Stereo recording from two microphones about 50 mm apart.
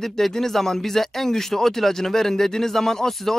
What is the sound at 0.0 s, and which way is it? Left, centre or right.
Speech, centre.